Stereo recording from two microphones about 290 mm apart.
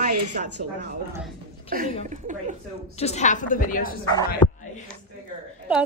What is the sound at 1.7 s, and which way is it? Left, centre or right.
Speech, right.